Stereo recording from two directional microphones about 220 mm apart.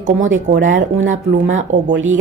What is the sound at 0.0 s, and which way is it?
Speech, 35° right (ahead or behind).